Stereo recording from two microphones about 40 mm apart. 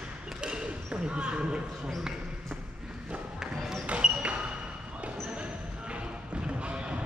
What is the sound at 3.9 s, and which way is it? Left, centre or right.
Basketball bounce, right.